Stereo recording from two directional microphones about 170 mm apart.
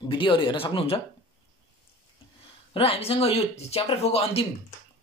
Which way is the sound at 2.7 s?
35° left (ahead or behind).